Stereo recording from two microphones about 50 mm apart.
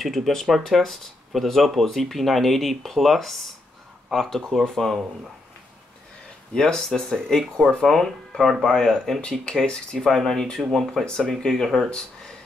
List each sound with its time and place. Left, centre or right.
0.0 s speech: centre
6.5 s speech: centre
9.2 s speech: left
10.0 s speech: centre